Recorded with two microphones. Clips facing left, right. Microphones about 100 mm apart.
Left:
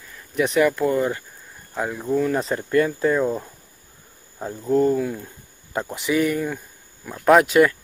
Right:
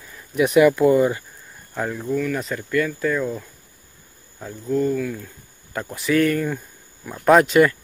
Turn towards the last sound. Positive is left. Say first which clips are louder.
# even
turn(degrees=0)  # may be behind; listen again after turning